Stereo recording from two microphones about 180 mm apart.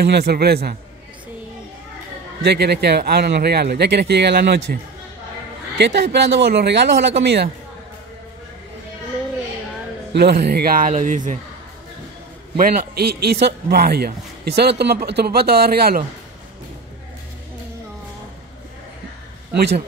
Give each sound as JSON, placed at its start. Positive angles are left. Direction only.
{"t": 0.0, "sound": "a man's voice", "side_deg": -65}
{"t": 2.4, "sound": "speech", "side_deg": -65}
{"t": 5.8, "sound": "speech", "side_deg": -75}
{"t": 10.1, "sound": "speech", "side_deg": -65}
{"t": 12.5, "sound": "a man's voice", "side_deg": -55}